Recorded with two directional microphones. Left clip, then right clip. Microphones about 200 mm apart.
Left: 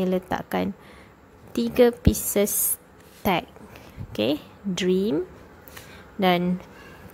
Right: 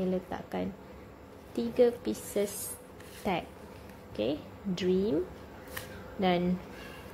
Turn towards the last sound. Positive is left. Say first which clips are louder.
# left 7 dB
turn(degrees=25)  # may be behind; listen again after turning